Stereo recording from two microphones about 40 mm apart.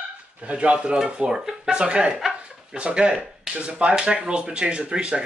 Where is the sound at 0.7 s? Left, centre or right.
Centre.